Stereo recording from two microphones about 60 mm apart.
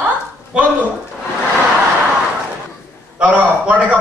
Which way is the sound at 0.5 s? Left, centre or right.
Centre.